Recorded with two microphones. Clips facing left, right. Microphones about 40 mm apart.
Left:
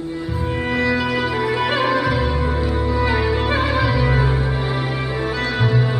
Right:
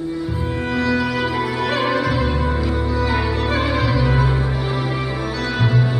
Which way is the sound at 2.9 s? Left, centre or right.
Left.